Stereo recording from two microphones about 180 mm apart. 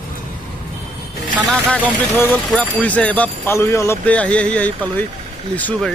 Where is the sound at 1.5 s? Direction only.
5° left (ahead or behind).